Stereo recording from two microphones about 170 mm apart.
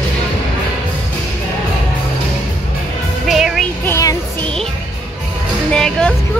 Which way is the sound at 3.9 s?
20° left (ahead or behind).